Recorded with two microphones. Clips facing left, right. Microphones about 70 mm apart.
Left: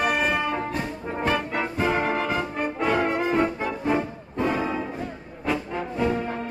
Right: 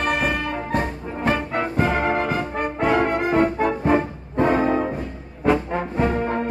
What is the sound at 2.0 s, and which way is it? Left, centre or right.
Brass instrument, right.